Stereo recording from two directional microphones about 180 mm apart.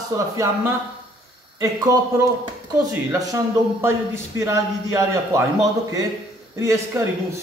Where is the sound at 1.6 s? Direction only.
20° right (ahead or behind).